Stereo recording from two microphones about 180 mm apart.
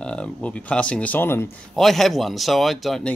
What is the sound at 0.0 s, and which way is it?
Speech, 5° left (ahead or behind).